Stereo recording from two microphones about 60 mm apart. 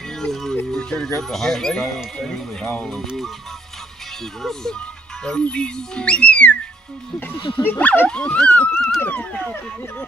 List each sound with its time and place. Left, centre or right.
0.2 s speech: centre
4.4 s speech: centre
7.2 s speech: left
8.1 s speech: centre